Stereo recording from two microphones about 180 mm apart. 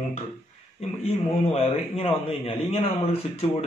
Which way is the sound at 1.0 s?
35° left (ahead or behind).